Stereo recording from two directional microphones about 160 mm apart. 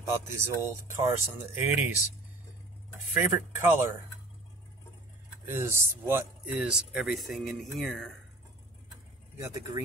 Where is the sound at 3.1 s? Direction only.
15° right (ahead or behind).